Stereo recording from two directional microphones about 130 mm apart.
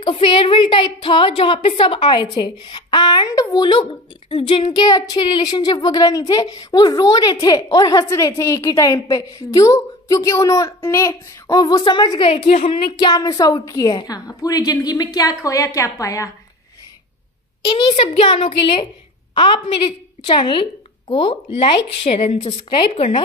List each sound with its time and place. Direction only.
0.0 s a woman's voice: 40° left (ahead or behind); by 16.3 s 25° left (ahead or behind)
17.9 s a woman's voice: 45° left (ahead or behind)